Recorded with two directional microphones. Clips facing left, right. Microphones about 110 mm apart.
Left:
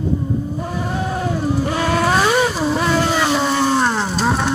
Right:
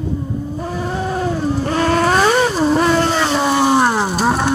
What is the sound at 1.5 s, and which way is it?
Vehicle, 5° left (ahead or behind).